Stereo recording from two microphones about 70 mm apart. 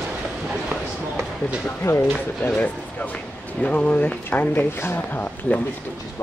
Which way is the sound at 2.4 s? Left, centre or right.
Left.